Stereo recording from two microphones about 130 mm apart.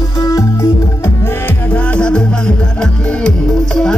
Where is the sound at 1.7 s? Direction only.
10° left (ahead or behind).